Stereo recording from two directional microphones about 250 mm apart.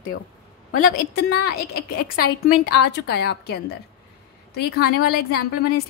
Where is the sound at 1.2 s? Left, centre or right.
Left.